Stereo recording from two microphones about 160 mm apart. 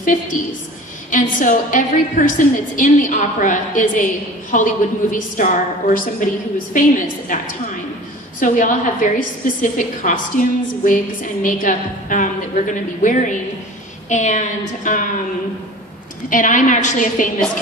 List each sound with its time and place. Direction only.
0.0 s a woman's voice: 55° left (ahead or behind)
16.3 s a woman's voice: 55° left (ahead or behind)